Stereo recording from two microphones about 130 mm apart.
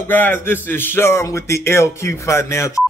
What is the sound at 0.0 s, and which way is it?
A man's voice, 15° left (ahead or behind).